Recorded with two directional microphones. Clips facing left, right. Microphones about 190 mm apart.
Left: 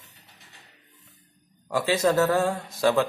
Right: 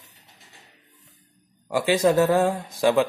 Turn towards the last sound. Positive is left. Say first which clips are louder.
# right 2 dB
turn(degrees=-15)  # may be behind; listen again after turning